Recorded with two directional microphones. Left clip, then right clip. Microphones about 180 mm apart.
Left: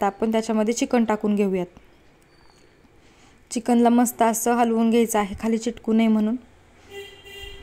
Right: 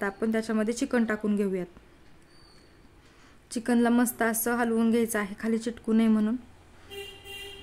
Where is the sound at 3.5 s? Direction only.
20° left (ahead or behind).